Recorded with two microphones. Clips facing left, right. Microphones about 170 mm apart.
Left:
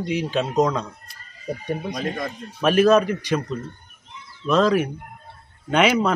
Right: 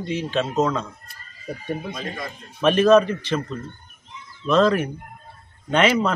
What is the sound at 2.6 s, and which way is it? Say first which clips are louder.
Speech: right 1 dB; 10° left (ahead or behind).